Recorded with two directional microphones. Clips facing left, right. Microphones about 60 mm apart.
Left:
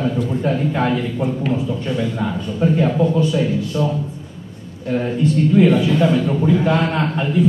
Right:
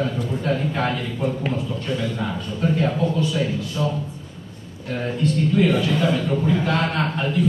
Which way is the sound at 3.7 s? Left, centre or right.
Centre.